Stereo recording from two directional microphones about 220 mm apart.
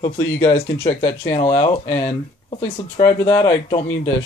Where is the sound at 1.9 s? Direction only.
10° left (ahead or behind).